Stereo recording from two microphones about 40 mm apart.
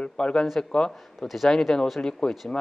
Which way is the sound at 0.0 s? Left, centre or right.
Left.